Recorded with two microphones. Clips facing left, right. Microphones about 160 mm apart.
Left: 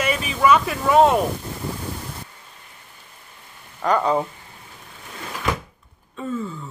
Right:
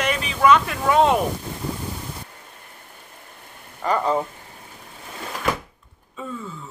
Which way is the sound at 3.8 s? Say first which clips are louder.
Left 2 dB; centre (ahead or behind).